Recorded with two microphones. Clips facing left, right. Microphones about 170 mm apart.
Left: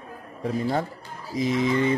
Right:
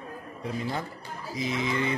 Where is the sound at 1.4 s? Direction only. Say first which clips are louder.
Left 7 dB; 40° left (ahead or behind).